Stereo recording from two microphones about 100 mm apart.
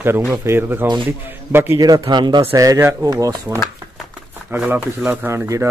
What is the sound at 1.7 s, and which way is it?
Speech, 40° right (ahead or behind).